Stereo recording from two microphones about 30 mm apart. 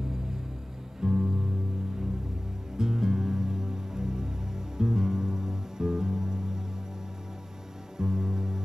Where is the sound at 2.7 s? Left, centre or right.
Centre.